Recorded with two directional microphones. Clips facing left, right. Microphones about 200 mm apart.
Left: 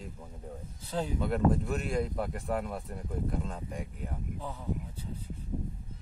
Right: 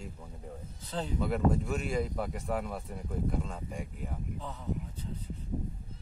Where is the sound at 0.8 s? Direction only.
10° left (ahead or behind).